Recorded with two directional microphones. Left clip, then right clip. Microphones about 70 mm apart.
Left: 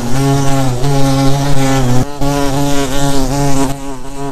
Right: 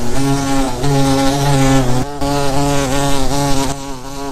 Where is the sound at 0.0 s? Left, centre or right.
Left; by 1.9 s centre.